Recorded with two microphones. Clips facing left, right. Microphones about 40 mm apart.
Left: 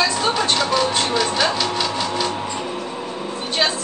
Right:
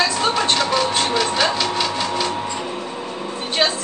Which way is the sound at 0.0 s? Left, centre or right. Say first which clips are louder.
Even; centre.